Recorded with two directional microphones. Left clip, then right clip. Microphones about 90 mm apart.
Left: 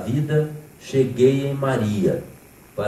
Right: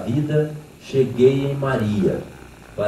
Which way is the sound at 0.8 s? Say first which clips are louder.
Right 1 dB; 30° left (ahead or behind).